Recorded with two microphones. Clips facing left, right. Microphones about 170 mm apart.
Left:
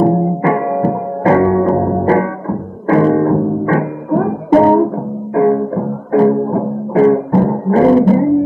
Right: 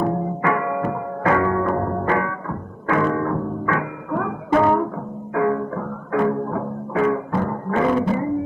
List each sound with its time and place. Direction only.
0.0 s music: 30° left (ahead or behind)